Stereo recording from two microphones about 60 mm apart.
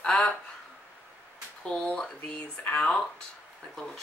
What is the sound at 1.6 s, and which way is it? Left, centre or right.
Speech, centre.